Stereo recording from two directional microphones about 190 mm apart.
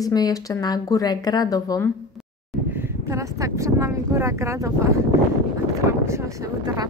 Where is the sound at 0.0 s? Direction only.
20° left (ahead or behind).